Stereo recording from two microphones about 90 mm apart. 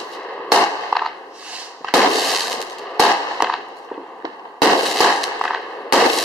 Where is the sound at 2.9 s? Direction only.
5° right (ahead or behind).